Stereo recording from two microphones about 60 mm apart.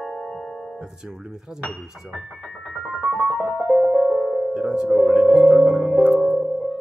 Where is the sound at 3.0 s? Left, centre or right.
Centre.